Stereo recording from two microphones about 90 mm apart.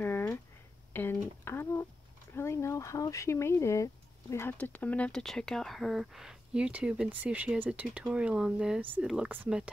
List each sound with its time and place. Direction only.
0.0 s a sound: 25° left (ahead or behind)
0.9 s speech: 25° left (ahead or behind)
4.6 s speech: 15° left (ahead or behind)
5.2 s speech: 5° left (ahead or behind)